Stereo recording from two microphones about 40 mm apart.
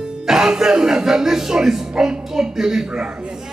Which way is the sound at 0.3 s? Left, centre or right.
Centre.